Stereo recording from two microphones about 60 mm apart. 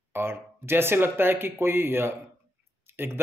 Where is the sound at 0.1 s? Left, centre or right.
Right.